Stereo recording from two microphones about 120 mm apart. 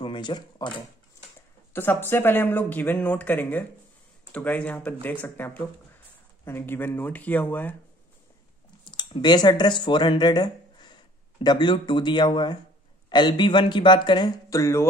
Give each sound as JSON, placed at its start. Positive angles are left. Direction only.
{"t": 0.0, "sound": "speech", "side_deg": 40}
{"t": 1.7, "sound": "speech", "side_deg": 15}
{"t": 8.9, "sound": "speech", "side_deg": 35}
{"t": 14.5, "sound": "speech", "side_deg": 25}